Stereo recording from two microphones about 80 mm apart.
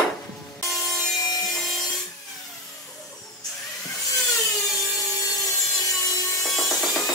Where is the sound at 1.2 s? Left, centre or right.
Left.